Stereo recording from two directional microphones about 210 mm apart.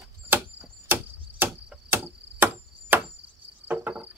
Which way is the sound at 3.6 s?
10° right (ahead or behind).